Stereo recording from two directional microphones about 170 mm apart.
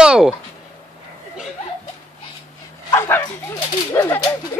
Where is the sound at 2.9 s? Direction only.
15° left (ahead or behind).